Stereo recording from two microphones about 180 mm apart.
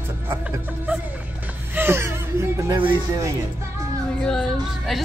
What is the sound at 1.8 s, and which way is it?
Chuckle, 15° right (ahead or behind).